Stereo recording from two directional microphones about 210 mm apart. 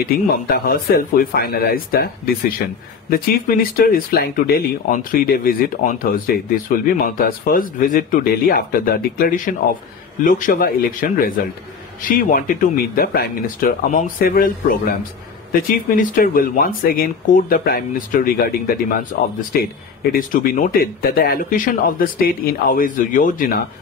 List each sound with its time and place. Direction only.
0.0 s speech: 45° left (ahead or behind)